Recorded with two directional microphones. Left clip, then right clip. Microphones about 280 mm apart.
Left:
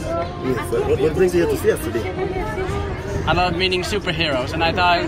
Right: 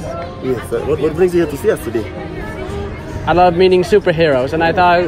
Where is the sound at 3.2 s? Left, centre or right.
Right.